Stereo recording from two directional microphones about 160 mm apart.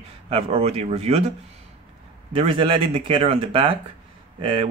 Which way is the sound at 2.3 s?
35° right (ahead or behind).